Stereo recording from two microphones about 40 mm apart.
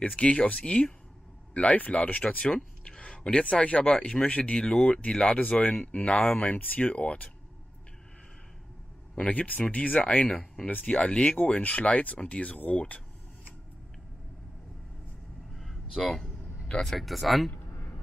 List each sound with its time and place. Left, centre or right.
0.1 s speech: left
4.6 s speech: centre
5.3 s speech: left
9.1 s speech: left
9.8 s speech: left
15.5 s vehicle: centre
16.0 s speech: centre
16.6 s speech: left
17.0 s speech: centre